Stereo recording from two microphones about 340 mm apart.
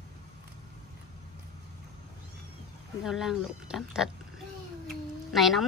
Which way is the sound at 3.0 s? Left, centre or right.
Centre.